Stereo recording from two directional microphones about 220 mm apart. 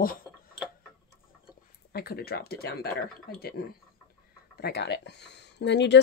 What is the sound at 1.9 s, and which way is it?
Speech, 45° left (ahead or behind).